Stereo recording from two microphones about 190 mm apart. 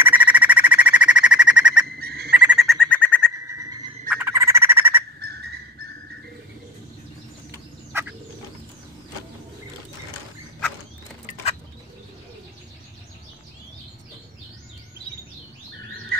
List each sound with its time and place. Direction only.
0.0 s bird: 10° right (ahead or behind)
2.0 s bird: 55° right (ahead or behind)
2.3 s bird: 5° right (ahead or behind)
3.4 s a sound: 15° right (ahead or behind)
4.1 s frog: 15° right (ahead or behind)
5.2 s a sound: 55° right (ahead or behind)
7.9 s frog: 15° right (ahead or behind)